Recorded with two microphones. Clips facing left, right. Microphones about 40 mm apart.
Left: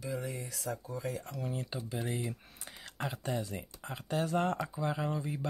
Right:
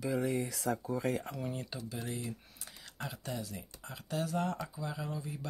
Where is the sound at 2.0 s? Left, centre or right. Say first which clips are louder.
Left 4 dB; centre; by 5.5 s left.